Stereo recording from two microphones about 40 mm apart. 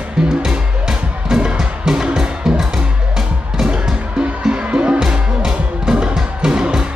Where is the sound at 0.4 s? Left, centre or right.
Centre.